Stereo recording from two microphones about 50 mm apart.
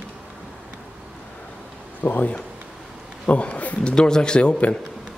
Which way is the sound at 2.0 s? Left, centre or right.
Left.